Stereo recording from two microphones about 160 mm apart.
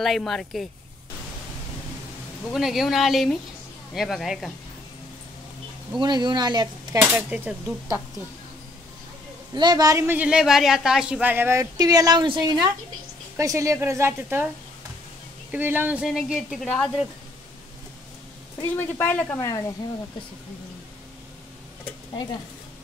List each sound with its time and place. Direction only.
0.0 s speech: centre (ahead or behind)
2.5 s speech: centre (ahead or behind)
5.9 s speech: 25° right (ahead or behind)
7.0 s a woman's voice: 10° right (ahead or behind)
9.5 s a woman's voice: 25° right (ahead or behind)
11.7 s a woman's voice: 25° right (ahead or behind)
15.5 s speech: 10° right (ahead or behind); by 16.9 s 5° left (ahead or behind)
18.6 s speech: 15° left (ahead or behind)